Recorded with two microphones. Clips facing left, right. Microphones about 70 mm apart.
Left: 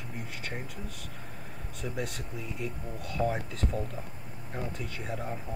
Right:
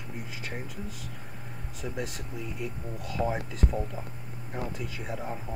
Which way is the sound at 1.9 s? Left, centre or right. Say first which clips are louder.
Even; centre.